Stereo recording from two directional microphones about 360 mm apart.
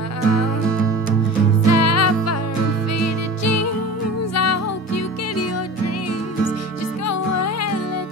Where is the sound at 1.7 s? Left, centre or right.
Left.